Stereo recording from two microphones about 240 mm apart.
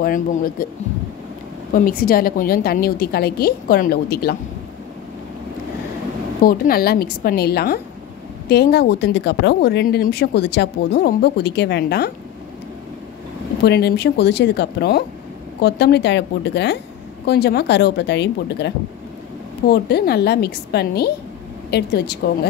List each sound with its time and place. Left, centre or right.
0.0 s a woman's voice: left
1.7 s a woman's voice: left
6.4 s a woman's voice: left
13.7 s speech: left
19.7 s a woman's voice: left